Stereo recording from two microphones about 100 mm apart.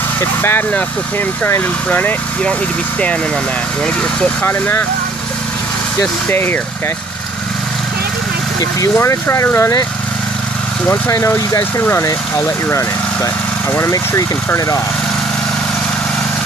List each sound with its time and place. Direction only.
0.2 s speech: 25° left (ahead or behind)
4.2 s speech: 20° left (ahead or behind)
5.9 s speech: 20° left (ahead or behind)
8.9 s speech: 25° left (ahead or behind)
11.1 s speech: 30° left (ahead or behind)